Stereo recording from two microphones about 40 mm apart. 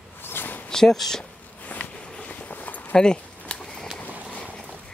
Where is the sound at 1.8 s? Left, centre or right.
Left.